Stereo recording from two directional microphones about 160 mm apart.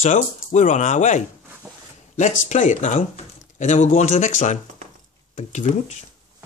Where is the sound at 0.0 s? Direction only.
50° left (ahead or behind).